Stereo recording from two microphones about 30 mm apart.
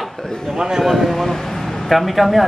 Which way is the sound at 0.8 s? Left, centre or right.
Centre.